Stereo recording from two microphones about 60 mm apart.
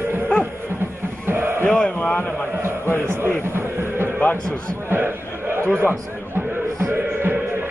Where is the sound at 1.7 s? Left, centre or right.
Centre.